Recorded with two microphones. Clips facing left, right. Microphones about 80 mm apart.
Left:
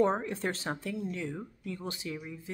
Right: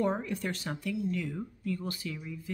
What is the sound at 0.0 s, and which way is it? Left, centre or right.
Speech, left.